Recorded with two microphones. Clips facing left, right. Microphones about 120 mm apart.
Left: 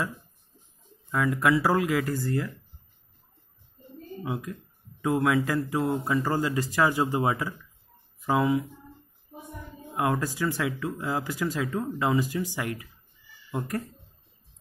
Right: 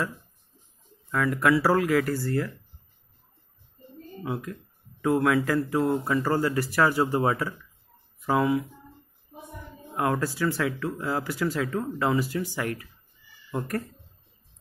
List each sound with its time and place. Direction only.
1.1 s speech: 20° left (ahead or behind)
4.2 s speech: 20° left (ahead or behind)
10.2 s speech: 15° left (ahead or behind)